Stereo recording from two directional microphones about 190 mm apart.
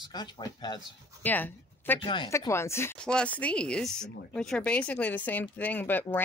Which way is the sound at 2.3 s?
15° left (ahead or behind).